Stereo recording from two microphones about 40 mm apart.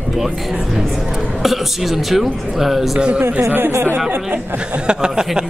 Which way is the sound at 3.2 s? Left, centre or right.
Right.